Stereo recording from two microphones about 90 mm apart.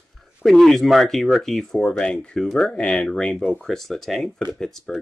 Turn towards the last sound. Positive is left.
turn(degrees=5)  # may be behind; listen again after turning